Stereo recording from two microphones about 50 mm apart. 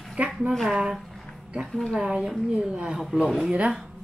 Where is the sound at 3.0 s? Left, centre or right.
Centre.